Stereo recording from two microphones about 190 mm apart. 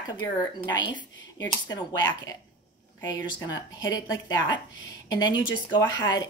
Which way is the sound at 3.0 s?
20° left (ahead or behind).